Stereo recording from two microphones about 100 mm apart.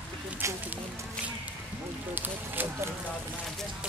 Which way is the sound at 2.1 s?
20° right (ahead or behind).